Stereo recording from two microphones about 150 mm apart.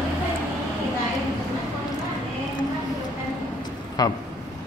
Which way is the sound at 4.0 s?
25° left (ahead or behind).